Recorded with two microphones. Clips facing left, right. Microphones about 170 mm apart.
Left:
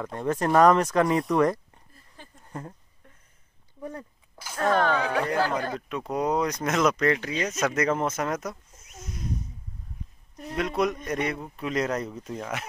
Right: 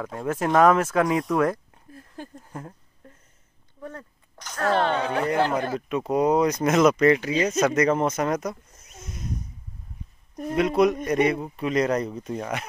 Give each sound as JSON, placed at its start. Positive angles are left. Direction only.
{"t": 0.0, "sound": "speech", "side_deg": -5}
{"t": 2.4, "sound": "a sound", "side_deg": 0}
{"t": 3.8, "sound": "a sound", "side_deg": 10}
{"t": 4.7, "sound": "speech", "side_deg": -25}
{"t": 5.7, "sound": "speech", "side_deg": -5}
{"t": 10.5, "sound": "speech", "side_deg": -5}